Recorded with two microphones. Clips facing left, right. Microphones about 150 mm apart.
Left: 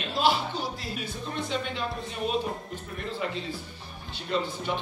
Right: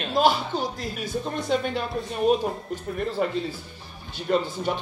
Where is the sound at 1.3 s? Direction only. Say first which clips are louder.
Right 6 dB; 45° right (ahead or behind).